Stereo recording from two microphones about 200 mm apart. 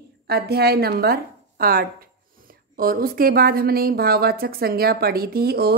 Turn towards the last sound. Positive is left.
turn(degrees=-50)  # may be behind; listen again after turning